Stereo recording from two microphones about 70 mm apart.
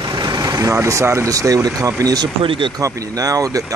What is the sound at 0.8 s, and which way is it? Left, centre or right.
Speech, right.